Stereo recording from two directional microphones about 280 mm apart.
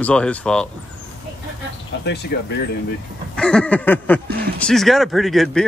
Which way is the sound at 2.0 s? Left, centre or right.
Left.